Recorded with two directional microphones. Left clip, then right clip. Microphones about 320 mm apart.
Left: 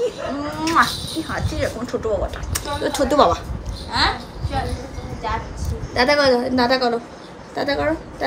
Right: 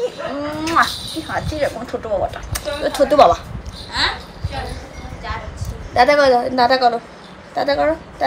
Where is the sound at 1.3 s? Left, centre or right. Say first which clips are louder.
Right 5 dB; centre.